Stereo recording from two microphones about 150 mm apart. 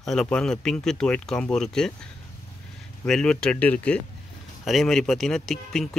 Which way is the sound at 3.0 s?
5° left (ahead or behind).